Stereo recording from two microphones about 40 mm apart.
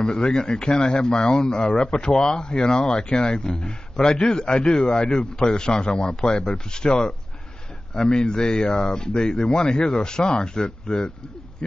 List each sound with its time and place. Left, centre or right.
0.0 s speech: left